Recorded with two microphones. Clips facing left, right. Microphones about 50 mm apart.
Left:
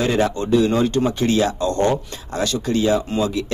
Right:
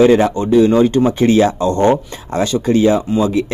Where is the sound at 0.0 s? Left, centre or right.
Right.